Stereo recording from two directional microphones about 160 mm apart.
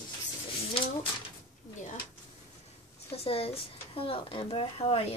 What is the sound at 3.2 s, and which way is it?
A woman's voice, 35° left (ahead or behind).